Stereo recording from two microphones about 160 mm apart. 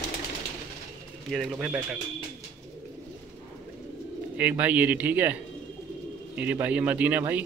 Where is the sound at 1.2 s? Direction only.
Centre (ahead or behind).